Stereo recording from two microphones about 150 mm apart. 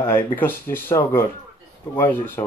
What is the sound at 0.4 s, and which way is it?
Speech, 15° left (ahead or behind).